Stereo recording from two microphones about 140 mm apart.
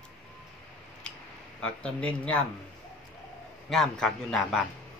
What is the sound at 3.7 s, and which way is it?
Speech, 5° left (ahead or behind).